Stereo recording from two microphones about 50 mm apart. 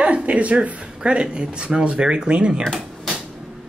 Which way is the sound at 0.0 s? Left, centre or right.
Right.